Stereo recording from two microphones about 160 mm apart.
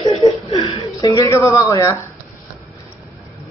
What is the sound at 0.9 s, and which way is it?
Speech, 20° left (ahead or behind).